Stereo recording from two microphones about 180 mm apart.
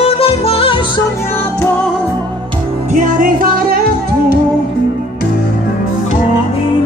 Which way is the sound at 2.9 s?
45° right (ahead or behind).